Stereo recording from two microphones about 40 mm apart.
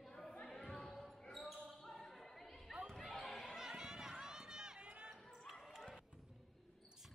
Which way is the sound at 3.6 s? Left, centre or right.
Centre.